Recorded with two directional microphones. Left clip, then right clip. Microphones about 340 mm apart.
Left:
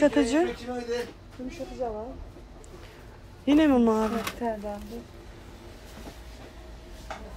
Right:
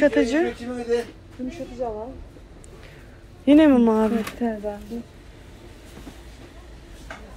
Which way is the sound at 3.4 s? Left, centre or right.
Centre.